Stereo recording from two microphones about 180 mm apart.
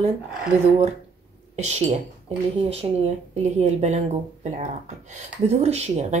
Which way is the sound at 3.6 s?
40° right (ahead or behind).